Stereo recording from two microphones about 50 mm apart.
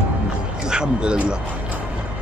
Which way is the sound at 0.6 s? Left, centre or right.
Centre.